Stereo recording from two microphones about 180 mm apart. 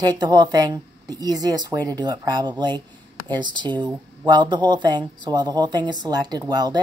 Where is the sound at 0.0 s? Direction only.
25° right (ahead or behind).